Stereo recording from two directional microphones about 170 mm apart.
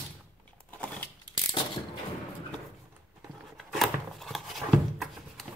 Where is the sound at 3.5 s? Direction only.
Centre (ahead or behind).